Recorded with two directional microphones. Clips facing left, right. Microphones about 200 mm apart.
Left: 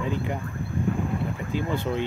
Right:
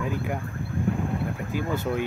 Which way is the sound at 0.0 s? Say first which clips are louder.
Left 1 dB; 10° right (ahead or behind).